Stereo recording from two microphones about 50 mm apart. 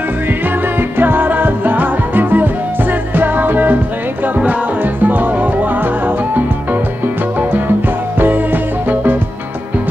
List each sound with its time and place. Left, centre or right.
0.7 s music: right
5.0 s music: right